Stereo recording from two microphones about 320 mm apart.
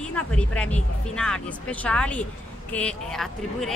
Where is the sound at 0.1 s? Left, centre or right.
Centre.